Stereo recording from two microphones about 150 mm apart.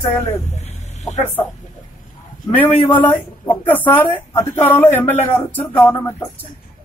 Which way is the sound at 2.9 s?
10° left (ahead or behind).